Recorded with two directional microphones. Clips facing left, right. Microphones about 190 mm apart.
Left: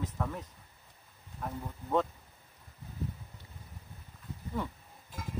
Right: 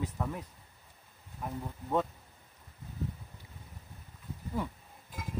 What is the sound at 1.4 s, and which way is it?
Speech, 10° right (ahead or behind).